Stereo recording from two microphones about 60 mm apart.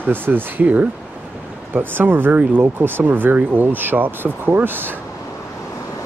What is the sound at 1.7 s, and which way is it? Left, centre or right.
Speech, right.